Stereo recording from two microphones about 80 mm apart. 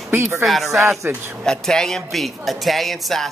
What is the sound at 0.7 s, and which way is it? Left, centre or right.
Speech, right.